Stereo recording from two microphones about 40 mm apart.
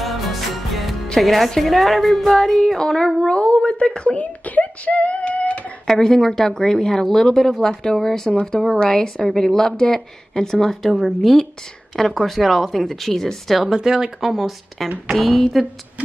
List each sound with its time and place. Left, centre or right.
0.0 s music: centre
1.2 s speech: centre
2.3 s a woman's voice: centre
3.3 s a sound: left
4.2 s a sound: left
5.9 s a woman's voice: centre
13.7 s speech: centre
15.1 s speech: centre